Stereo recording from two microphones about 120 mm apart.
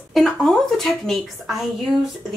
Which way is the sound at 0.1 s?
Centre (ahead or behind).